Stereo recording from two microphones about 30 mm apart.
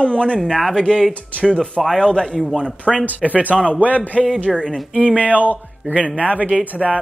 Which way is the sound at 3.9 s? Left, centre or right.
Left.